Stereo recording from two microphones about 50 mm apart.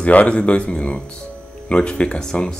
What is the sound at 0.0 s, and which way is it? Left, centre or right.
Speech, left.